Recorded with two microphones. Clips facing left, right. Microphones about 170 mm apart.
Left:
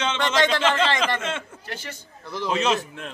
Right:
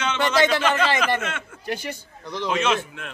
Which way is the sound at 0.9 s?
10° right (ahead or behind).